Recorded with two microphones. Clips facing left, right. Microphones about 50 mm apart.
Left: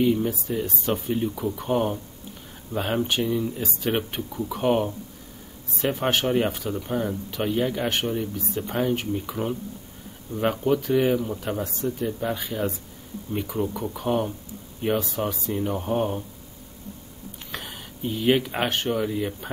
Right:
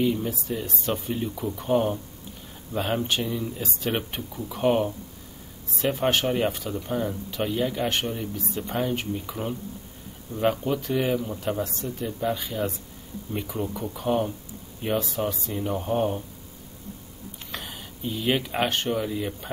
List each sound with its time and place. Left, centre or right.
0.0 s speech: centre
17.5 s speech: centre